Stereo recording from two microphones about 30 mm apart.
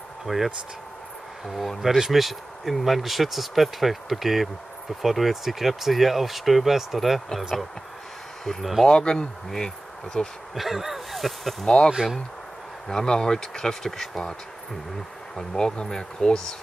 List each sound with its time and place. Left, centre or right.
0.3 s speech: centre
1.8 s speech: centre
8.5 s speech: centre
8.8 s speech: left
10.5 s speech: centre
11.6 s speech: left
12.9 s speech: left
15.3 s speech: left